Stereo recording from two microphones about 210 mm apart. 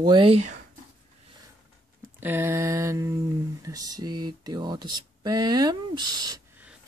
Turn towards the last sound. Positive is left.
turn(degrees=-20)  # may be behind; listen again after turning